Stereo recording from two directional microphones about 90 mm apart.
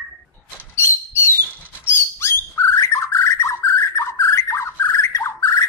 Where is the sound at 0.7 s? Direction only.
25° left (ahead or behind).